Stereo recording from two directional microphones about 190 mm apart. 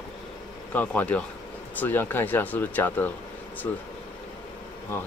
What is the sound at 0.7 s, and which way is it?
Speech, 10° left (ahead or behind).